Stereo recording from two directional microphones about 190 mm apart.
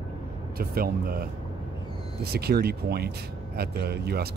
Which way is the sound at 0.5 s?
50° right (ahead or behind).